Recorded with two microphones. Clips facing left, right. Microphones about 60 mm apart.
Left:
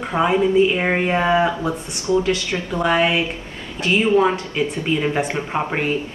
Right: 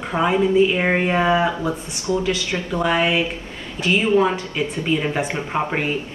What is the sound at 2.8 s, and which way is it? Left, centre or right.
Speech, centre.